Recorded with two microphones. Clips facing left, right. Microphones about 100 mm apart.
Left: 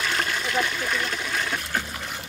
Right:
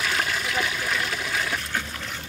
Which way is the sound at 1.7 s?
10° left (ahead or behind).